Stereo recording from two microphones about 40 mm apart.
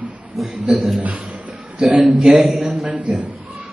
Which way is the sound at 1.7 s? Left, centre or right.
Centre.